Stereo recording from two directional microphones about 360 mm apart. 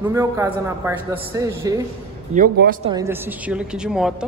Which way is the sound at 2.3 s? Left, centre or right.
Right.